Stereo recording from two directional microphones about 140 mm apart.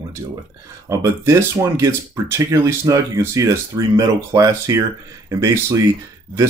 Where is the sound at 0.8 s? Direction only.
20° right (ahead or behind).